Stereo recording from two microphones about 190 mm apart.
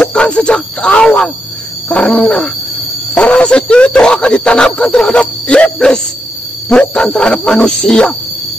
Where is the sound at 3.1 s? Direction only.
5° left (ahead or behind).